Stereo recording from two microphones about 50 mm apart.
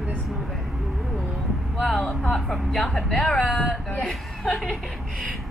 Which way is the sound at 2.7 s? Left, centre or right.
Centre.